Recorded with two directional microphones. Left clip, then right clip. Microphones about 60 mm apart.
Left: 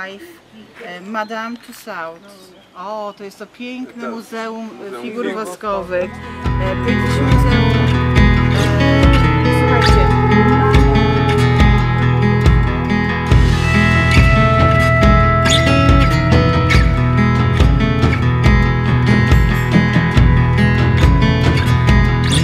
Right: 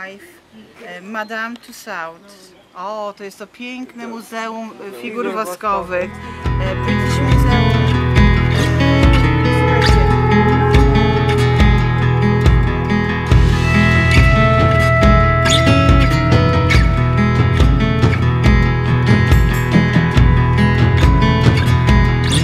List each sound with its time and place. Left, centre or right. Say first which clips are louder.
1.1 s speech: left 1 dB; centre
2.8 s speech: right 1 dB; right
6.6 s music: left 2 dB; centre